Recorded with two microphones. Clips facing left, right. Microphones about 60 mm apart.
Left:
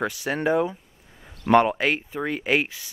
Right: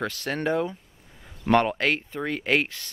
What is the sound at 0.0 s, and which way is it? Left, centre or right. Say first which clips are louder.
Speech: left 3 dB; centre.